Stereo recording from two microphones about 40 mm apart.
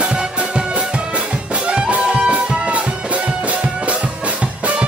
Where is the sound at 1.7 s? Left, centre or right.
Right.